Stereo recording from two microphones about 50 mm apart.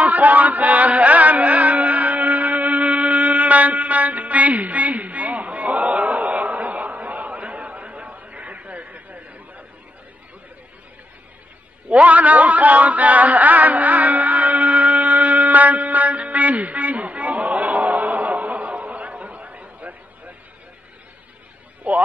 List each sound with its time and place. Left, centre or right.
0.0 s music: right
11.9 s a sound: right
21.8 s music: right